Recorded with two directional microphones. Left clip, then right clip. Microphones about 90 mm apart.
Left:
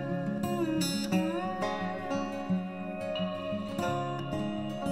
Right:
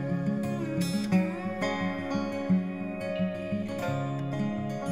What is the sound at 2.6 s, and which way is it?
Music, 40° right (ahead or behind).